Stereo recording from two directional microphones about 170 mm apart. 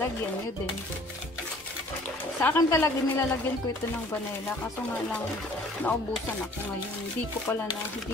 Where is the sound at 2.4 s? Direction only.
15° left (ahead or behind).